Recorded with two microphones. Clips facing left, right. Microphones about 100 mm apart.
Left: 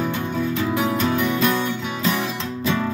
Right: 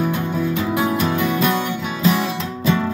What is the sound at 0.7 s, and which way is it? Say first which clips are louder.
Music: right 1 dB; 15° right (ahead or behind).